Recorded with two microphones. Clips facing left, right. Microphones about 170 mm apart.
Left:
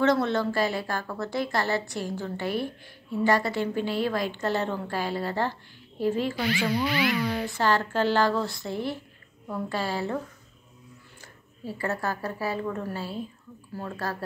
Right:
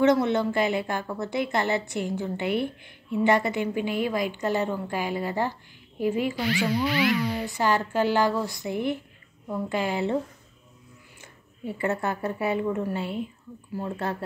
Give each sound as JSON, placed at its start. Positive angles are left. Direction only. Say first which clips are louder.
{"t": 0.0, "sound": "a woman's voice", "louder": "right 2 dB", "side_deg": -20}
{"t": 6.6, "sound": "a woman's voice", "louder": "right 2 dB", "side_deg": -5}